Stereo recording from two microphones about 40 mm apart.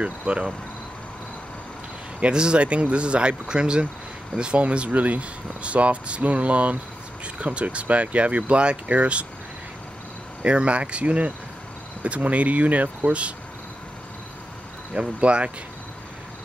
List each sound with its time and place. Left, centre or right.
0.0 s speech: right
2.3 s speech: right
10.4 s speech: right
15.0 s speech: right